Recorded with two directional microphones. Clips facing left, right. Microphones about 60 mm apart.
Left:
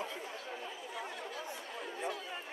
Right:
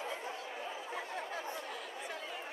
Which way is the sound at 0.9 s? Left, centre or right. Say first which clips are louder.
Right 2 dB; right.